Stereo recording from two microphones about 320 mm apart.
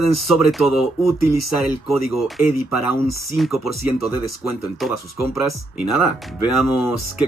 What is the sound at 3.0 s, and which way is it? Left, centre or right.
Speech, left.